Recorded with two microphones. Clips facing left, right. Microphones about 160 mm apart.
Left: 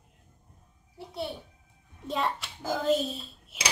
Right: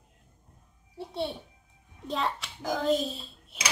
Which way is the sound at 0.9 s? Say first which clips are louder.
Right 3 dB; 25° right (ahead or behind).